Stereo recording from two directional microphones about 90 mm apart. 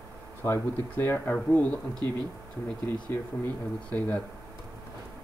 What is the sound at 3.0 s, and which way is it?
Speech, 20° left (ahead or behind).